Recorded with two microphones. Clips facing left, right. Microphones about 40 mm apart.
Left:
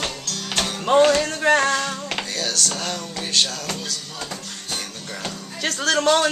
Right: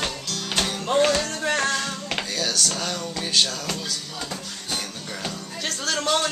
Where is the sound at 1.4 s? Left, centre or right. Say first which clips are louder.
Left 6 dB; left.